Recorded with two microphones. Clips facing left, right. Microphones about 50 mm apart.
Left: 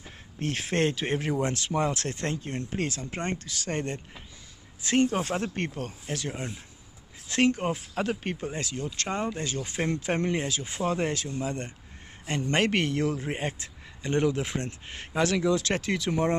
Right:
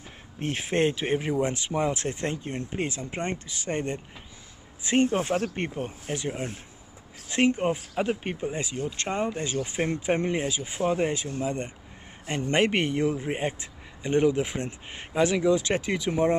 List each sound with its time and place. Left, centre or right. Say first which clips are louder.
0.4 s a man's voice: right 2 dB; centre